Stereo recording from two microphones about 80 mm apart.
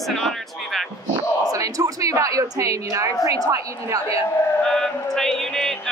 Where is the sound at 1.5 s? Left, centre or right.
Right.